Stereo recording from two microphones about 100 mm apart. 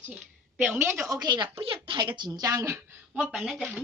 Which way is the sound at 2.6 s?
15° right (ahead or behind).